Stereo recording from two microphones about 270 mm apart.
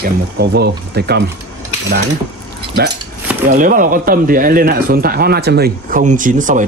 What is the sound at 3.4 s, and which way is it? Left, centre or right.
Speech, right.